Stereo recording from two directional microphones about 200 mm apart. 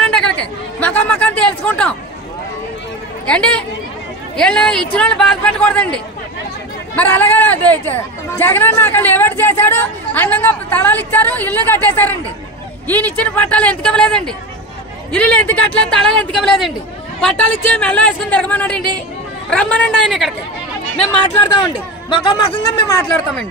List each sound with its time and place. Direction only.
0.1 s chatter: 5° left (ahead or behind)
1.7 s speech: 5° left (ahead or behind)
3.3 s a man's voice: 5° left (ahead or behind)
7.0 s a man's voice: 10° left (ahead or behind)
22.1 s a man's voice: 20° left (ahead or behind)